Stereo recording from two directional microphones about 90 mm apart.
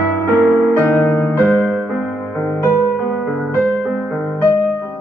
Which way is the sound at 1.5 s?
15° right (ahead or behind).